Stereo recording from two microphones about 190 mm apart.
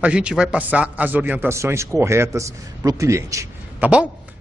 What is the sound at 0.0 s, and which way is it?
A man's voice, 5° right (ahead or behind).